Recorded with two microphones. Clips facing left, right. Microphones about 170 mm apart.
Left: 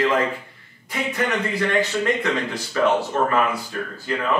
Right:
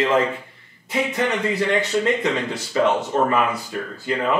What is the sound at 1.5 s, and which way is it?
A man's voice, 20° right (ahead or behind).